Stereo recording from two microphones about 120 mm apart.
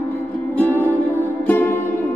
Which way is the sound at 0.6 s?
15° left (ahead or behind).